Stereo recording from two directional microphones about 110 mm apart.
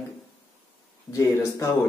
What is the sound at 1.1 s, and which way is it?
Speech, 25° left (ahead or behind).